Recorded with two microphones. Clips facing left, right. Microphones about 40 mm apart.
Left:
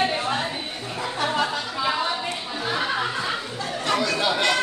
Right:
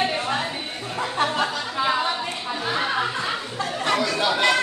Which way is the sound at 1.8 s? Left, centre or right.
Right.